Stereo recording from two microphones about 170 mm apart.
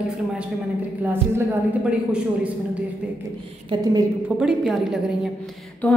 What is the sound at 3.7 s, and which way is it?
Speech, 25° right (ahead or behind).